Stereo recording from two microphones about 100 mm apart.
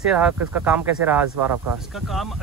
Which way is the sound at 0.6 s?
20° right (ahead or behind).